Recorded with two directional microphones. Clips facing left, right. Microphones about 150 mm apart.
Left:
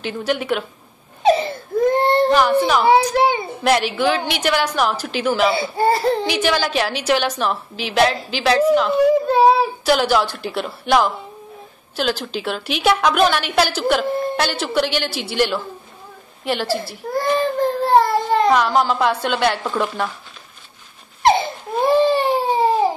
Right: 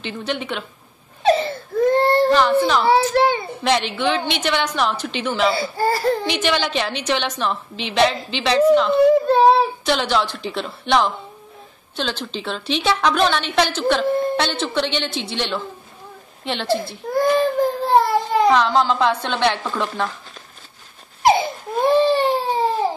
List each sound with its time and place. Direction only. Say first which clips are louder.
0.0 s a woman's voice: left 4 dB; 10° left (ahead or behind)
1.2 s baby cry: left 1 dB; 15° left (ahead or behind)
2.3 s a woman's voice: left 1 dB; 10° left (ahead or behind)
5.5 s speech: left 2 dB; 20° left (ahead or behind)
6.4 s a woman's voice: left 2 dB; 10° left (ahead or behind)
18.5 s a woman's voice: even; 10° left (ahead or behind)
19.6 s a woman's voice: left 3 dB; 15° left (ahead or behind)
21.2 s a sound: even; centre (ahead or behind)
21.9 s baby cry: left 1 dB; 10° left (ahead or behind)